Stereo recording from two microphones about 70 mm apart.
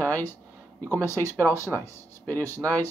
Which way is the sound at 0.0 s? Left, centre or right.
Left.